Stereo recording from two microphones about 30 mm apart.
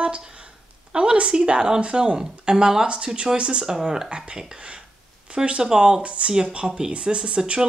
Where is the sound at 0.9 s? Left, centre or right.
Right.